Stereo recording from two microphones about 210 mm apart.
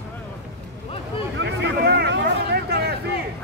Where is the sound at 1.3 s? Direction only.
55° right (ahead or behind).